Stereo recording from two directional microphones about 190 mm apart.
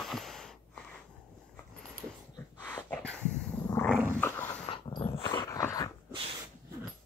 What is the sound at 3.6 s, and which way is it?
Dog, 10° left (ahead or behind).